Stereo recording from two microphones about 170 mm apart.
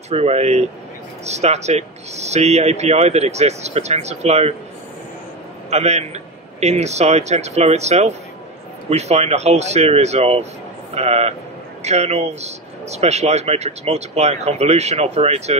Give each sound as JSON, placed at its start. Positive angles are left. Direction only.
{"t": 0.1, "sound": "a man's voice", "side_deg": -35}
{"t": 5.7, "sound": "a man's voice", "side_deg": -40}